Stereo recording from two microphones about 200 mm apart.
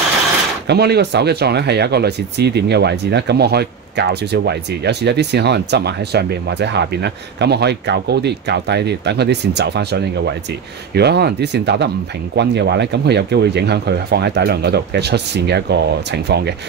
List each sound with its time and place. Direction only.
0.7 s speech: 55° right (ahead or behind)